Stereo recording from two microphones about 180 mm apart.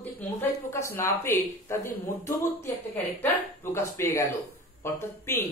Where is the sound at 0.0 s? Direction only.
10° left (ahead or behind).